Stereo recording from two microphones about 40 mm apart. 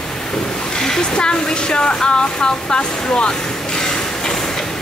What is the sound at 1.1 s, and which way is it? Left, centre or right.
Speech, left.